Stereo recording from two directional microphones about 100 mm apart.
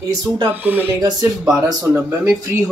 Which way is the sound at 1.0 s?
35° right (ahead or behind).